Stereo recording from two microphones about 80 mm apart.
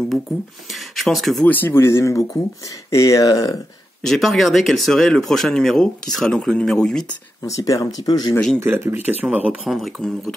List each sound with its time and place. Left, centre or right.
0.7 s a sound: centre
1.4 s speech: left
4.0 s speech: centre
7.4 s speech: left
8.5 s speech: right
9.0 s speech: centre
9.7 s speech: centre